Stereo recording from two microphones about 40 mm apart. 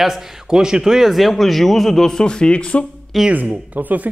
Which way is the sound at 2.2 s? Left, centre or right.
Left.